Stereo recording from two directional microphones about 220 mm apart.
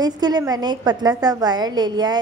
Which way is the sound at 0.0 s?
20° right (ahead or behind).